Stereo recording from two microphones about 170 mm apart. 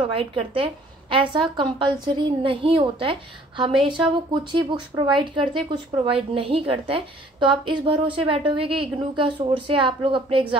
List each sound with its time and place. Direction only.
0.0 s a woman's voice: 35° right (ahead or behind)